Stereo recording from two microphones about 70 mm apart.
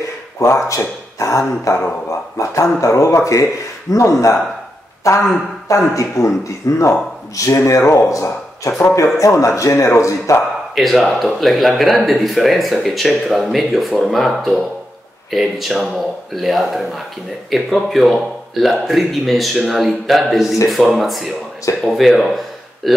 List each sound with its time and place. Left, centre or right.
0.7 s speech: left
10.7 s speech: centre